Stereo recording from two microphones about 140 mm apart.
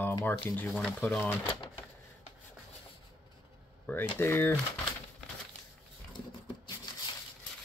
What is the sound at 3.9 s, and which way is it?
Speech, 15° left (ahead or behind).